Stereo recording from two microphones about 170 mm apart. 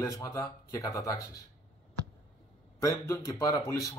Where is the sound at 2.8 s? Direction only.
20° left (ahead or behind).